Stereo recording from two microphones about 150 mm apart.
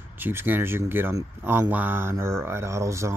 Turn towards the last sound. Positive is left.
turn(degrees=-20)  # may be behind; listen again after turning